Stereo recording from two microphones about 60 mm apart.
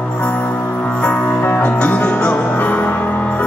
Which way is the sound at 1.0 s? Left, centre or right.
Centre.